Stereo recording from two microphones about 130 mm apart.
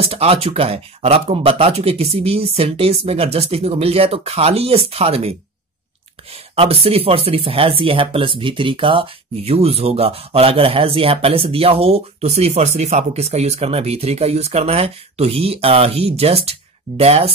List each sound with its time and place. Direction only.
0.0 s speech: 45° right (ahead or behind)
6.3 s speech: 50° right (ahead or behind)